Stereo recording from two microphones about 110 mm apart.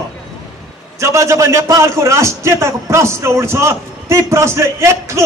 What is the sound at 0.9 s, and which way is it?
A man's voice, 25° right (ahead or behind).